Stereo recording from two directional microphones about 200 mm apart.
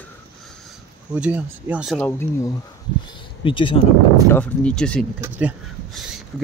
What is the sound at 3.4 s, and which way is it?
Speech, 25° left (ahead or behind).